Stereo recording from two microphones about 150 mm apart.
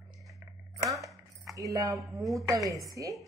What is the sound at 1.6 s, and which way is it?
A woman's voice, 20° right (ahead or behind).